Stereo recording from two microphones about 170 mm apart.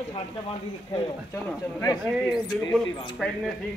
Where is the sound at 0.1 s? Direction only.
30° left (ahead or behind).